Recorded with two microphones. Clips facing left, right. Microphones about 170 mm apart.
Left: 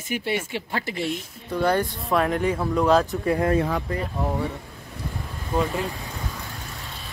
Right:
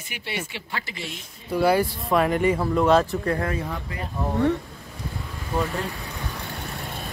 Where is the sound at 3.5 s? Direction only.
75° left (ahead or behind).